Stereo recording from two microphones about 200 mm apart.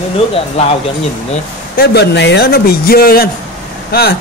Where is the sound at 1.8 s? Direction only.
55° left (ahead or behind).